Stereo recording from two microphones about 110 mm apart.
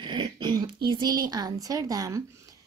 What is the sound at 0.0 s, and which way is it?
A woman's voice, 45° right (ahead or behind).